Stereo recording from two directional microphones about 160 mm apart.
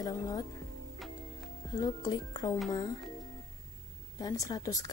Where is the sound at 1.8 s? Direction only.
25° left (ahead or behind).